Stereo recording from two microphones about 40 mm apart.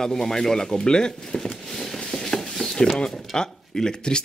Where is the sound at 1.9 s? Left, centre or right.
Centre.